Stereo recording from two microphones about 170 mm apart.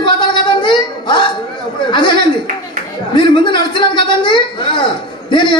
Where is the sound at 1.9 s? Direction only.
25° left (ahead or behind).